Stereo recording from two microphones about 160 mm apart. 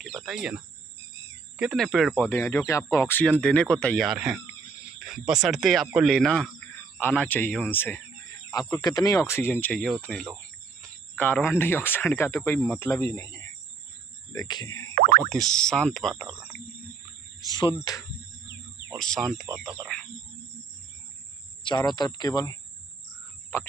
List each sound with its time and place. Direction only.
0.0 s cricket: centre (ahead or behind)
1.6 s speech: centre (ahead or behind)
2.1 s speech: 15° left (ahead or behind)
15.0 s boing: 65° right (ahead or behind)
15.2 s speech: 5° left (ahead or behind)
17.4 s speech: 25° left (ahead or behind)
18.9 s a sound: 5° left (ahead or behind)
19.6 s speech: centre (ahead or behind)
21.6 s speech: 25° left (ahead or behind)
23.5 s a sound: 15° left (ahead or behind)